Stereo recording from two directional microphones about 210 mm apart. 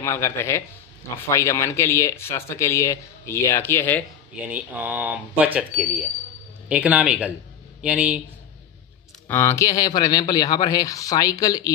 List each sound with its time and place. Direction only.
0.0 s speech: 10° left (ahead or behind)
4.5 s speech: 5° right (ahead or behind)
9.3 s speech: 10° left (ahead or behind)